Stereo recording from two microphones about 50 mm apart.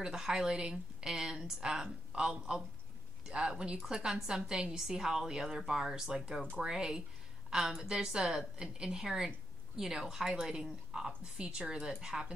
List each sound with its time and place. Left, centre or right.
0.0 s a woman's voice: centre